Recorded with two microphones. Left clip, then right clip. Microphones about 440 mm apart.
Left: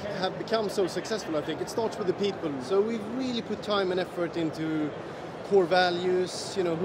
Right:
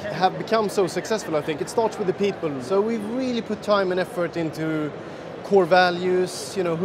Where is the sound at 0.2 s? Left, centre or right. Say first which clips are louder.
Right 8 dB; right.